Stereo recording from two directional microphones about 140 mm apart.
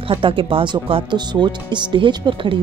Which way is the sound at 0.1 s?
40° right (ahead or behind).